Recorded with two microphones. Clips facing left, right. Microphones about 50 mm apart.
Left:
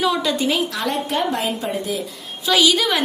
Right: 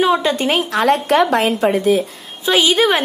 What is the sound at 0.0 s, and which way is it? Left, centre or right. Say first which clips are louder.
A woman's voice: right 4 dB; right.